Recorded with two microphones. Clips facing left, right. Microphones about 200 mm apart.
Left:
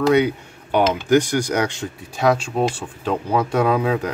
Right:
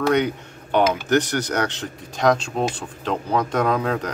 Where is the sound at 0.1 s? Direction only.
10° left (ahead or behind).